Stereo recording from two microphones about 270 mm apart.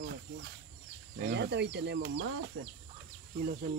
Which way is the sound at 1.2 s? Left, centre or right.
Right.